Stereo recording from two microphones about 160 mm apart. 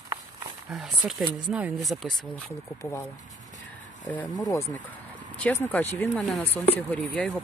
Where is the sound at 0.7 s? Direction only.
Centre (ahead or behind).